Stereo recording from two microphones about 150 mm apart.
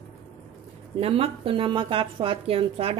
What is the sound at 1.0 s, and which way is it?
Speech, 40° right (ahead or behind).